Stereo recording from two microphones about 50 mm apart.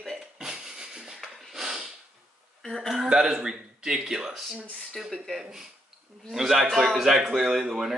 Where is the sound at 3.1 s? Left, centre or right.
Centre.